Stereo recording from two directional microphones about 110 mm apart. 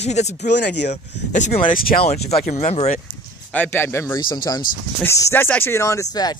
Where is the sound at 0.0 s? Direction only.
90° left.